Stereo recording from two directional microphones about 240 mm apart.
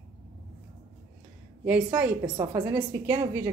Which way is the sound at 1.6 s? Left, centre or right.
Centre.